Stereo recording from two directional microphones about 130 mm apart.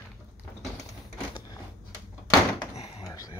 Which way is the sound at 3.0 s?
25° left (ahead or behind).